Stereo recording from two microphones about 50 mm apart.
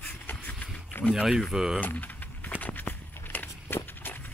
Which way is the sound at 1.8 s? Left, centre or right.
Left.